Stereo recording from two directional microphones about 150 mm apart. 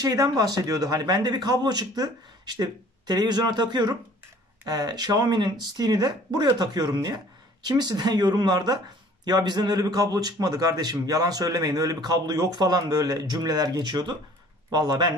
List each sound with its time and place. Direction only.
0.0 s a man's voice: 25° right (ahead or behind)